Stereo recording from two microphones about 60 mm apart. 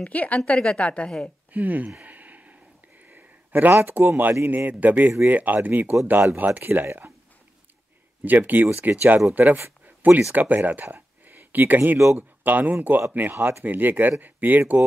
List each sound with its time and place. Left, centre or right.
0.0 s a woman's voice: left
1.5 s speech: right
2.0 s a sound: right
4.2 s a man's voice: right
8.2 s a man's voice: right
9.8 s a sound: right
10.3 s a man's voice: right